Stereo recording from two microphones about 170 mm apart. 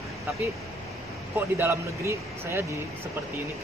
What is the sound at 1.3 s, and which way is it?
Speech, 10° right (ahead or behind).